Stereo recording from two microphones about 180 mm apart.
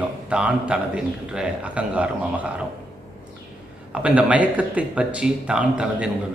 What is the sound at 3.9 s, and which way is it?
Speech, 5° right (ahead or behind).